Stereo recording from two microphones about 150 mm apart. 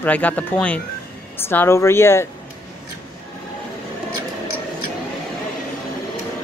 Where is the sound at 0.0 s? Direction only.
10° left (ahead or behind).